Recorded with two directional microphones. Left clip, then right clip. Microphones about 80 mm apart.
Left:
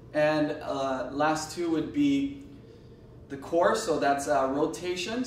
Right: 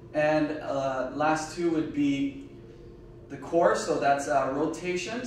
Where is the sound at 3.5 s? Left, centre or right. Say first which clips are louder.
Right 1 dB; right.